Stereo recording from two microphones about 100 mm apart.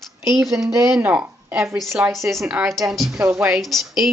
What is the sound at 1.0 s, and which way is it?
Speech, 15° right (ahead or behind).